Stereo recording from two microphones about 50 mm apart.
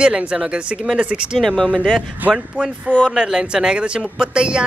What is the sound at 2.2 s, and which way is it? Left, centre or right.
Speech, right.